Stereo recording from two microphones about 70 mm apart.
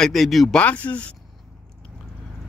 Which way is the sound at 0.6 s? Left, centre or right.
Left.